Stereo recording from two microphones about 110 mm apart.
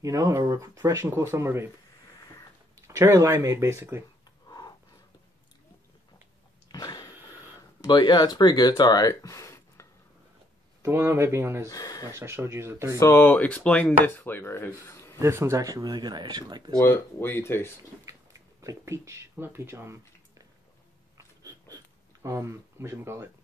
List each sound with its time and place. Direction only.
0.0 s speech: 30° right (ahead or behind)
2.9 s speech: 30° right (ahead or behind)
4.5 s a sound: 35° left (ahead or behind)
6.7 s a sound: 35° left (ahead or behind)
7.8 s speech: 40° left (ahead or behind)
10.8 s speech: 25° right (ahead or behind)
11.7 s speech: 35° left (ahead or behind)
12.1 s speech: 25° right (ahead or behind)
13.0 s speech: 20° left (ahead or behind)
15.1 s speech: 25° right (ahead or behind); by 16.7 s 40° right (ahead or behind)
16.8 s speech: 20° left (ahead or behind)
18.0 s a sound: 30° right (ahead or behind)
22.2 s speech: 25° right (ahead or behind)